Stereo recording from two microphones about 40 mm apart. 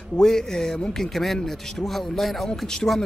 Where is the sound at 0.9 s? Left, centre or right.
Centre.